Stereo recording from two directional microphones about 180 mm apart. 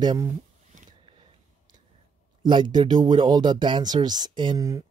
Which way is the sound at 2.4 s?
25° right (ahead or behind).